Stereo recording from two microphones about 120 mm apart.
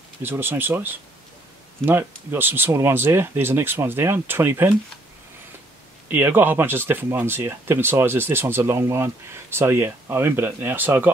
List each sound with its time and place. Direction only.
0.2 s speech: 15° right (ahead or behind)
6.0 s speech: 20° right (ahead or behind)